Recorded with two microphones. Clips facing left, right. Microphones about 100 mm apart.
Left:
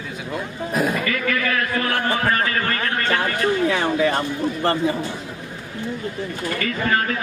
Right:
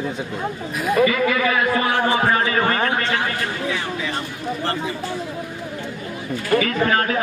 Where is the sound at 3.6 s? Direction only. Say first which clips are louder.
Left 6 dB; 50° left (ahead or behind).